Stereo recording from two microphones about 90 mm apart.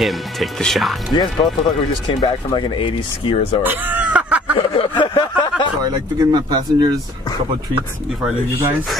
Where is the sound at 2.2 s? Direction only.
70° left (ahead or behind).